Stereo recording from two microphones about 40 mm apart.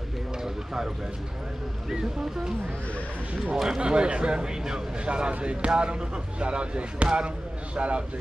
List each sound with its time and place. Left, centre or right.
0.4 s a sound: centre
1.9 s speech: centre
3.6 s speech: centre